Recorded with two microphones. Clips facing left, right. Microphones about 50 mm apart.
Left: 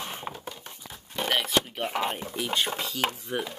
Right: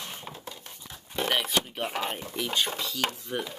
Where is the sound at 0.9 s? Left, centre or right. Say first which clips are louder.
Even; centre.